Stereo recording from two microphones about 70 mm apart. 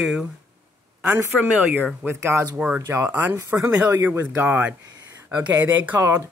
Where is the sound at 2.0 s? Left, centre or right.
Right.